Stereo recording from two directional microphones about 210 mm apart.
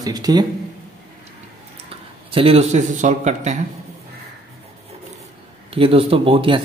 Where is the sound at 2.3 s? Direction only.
25° right (ahead or behind).